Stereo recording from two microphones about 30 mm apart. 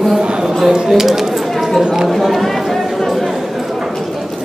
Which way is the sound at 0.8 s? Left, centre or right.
Centre.